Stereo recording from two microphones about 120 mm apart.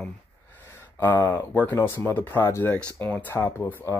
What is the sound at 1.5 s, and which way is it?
Speech, 15° left (ahead or behind).